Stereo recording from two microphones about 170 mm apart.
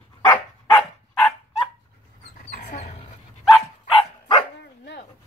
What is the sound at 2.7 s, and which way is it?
Dog, 40° left (ahead or behind).